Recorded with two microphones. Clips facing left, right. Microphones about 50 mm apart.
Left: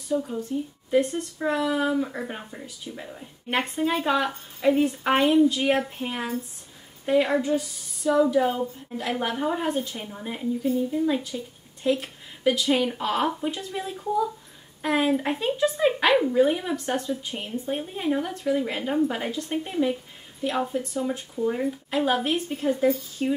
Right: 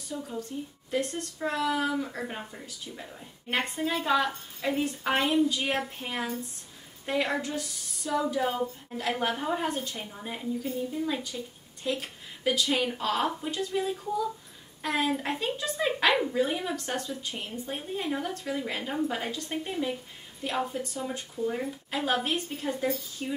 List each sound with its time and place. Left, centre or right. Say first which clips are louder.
0.2 s a woman's voice: left 6 dB; centre
23.2 s speech: left 10 dB; left